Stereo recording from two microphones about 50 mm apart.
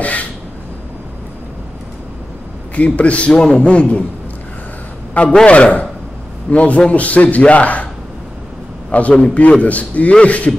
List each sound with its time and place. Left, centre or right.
0.0 s a sound: left
2.7 s a man's voice: left
5.3 s a man's voice: left
8.9 s a man's voice: left